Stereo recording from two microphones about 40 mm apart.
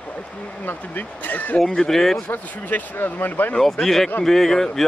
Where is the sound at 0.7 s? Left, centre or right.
Left.